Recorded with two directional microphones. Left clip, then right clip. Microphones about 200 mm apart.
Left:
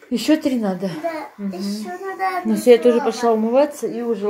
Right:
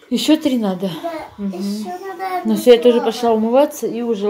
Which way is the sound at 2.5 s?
5° right (ahead or behind).